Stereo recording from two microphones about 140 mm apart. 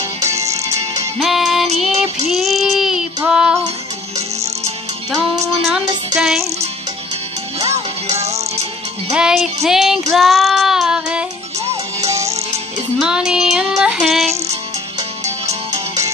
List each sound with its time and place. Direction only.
0.2 s music: 20° right (ahead or behind)
1.2 s music: centre (ahead or behind)
2.3 s child singing: centre (ahead or behind)
3.3 s music: 5° right (ahead or behind)
6.1 s music: centre (ahead or behind)
7.7 s music: 50° right (ahead or behind)
9.1 s music: 5° right (ahead or behind)
10.1 s child singing: centre (ahead or behind)
12.1 s music: 20° right (ahead or behind)
13.0 s music: 5° right (ahead or behind)